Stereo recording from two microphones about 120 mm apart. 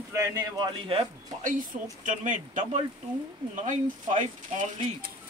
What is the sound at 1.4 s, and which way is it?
Speech, 90° right.